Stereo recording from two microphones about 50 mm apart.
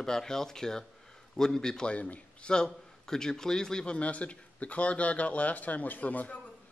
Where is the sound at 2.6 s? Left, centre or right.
Centre.